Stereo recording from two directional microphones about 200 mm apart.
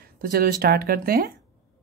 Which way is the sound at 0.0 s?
45° right (ahead or behind).